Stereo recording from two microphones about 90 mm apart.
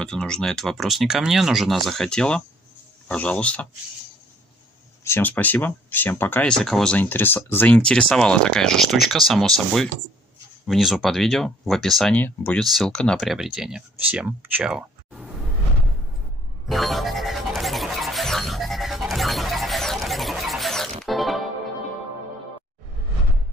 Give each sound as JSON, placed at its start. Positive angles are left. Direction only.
{"t": 0.0, "sound": "speech", "side_deg": 5}
{"t": 5.0, "sound": "speech", "side_deg": 30}
{"t": 5.3, "sound": "speech", "side_deg": 20}
{"t": 6.4, "sound": "speech", "side_deg": 10}
{"t": 7.0, "sound": "speech", "side_deg": 25}
{"t": 13.2, "sound": "speech", "side_deg": -5}
{"t": 16.6, "sound": "music", "side_deg": 0}